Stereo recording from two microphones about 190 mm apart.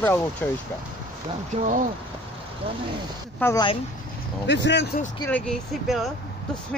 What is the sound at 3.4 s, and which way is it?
Speech, 20° left (ahead or behind).